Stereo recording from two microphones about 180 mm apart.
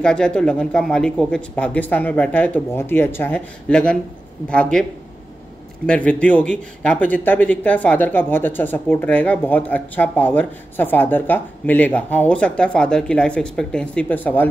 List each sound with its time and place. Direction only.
0.0 s speech: 5° left (ahead or behind)
5.9 s speech: 5° left (ahead or behind)